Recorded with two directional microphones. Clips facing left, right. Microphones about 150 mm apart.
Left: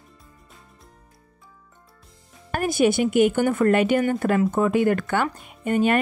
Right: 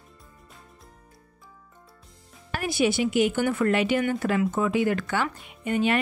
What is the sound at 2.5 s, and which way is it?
A woman's voice, 45° left (ahead or behind).